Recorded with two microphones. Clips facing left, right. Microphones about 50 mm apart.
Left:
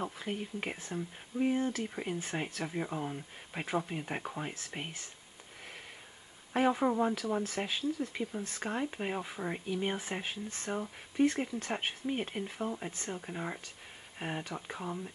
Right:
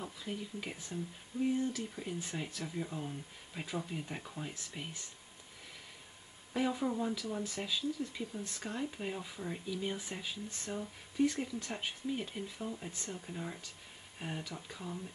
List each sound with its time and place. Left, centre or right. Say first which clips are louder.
0.0 s speech: left 5 dB; left
6.5 s speech: left 5 dB; left